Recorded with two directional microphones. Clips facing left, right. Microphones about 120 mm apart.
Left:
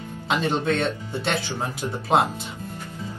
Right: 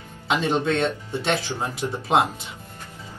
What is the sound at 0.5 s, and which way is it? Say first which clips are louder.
Speech: right 1 dB; 20° right (ahead or behind).